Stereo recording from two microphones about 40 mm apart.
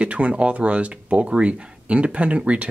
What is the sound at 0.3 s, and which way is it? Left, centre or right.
Speech, right.